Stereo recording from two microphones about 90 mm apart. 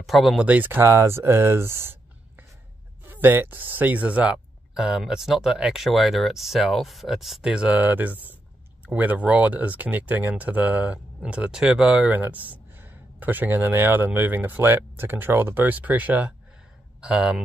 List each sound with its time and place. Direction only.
0.0 s speech: centre (ahead or behind)
0.5 s speech: 20° right (ahead or behind)